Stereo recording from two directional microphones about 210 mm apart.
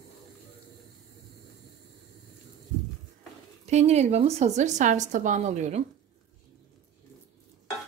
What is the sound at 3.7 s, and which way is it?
A woman's voice, 30° right (ahead or behind).